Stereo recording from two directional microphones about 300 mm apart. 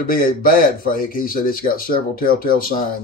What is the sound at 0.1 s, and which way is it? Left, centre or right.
Speech, left.